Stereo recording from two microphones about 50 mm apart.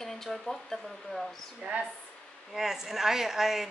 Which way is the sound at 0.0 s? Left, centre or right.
Centre.